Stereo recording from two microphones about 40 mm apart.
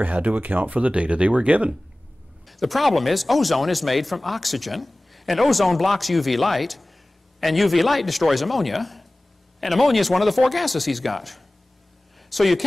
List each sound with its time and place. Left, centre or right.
0.0 s speech: right
2.4 s speech: centre